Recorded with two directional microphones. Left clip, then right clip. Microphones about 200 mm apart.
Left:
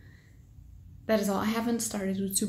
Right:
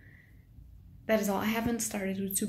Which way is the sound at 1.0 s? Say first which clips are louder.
Left 1 dB; 5° left (ahead or behind).